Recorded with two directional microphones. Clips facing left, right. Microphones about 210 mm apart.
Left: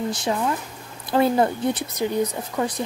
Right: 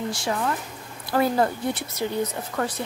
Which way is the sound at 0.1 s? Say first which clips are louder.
Left 2 dB; 20° left (ahead or behind).